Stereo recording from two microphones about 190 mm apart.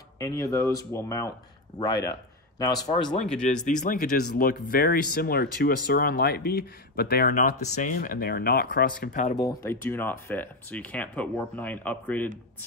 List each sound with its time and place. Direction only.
0.2 s speech: 15° left (ahead or behind)
3.4 s speech: 40° left (ahead or behind)
9.4 s speech: 15° left (ahead or behind)